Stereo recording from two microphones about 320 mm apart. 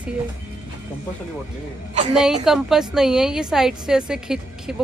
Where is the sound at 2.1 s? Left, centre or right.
Centre.